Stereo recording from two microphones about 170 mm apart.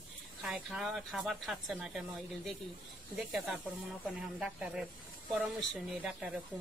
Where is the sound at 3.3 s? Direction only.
Centre (ahead or behind).